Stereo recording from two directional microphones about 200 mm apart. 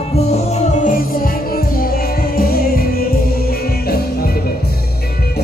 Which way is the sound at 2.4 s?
50° left (ahead or behind).